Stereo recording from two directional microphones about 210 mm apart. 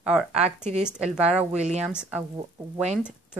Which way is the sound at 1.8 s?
5° right (ahead or behind).